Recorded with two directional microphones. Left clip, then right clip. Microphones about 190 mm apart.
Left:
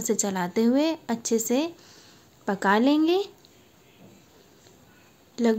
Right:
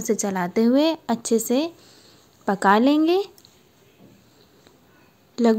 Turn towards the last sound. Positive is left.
turn(degrees=-20)  # may be behind; listen again after turning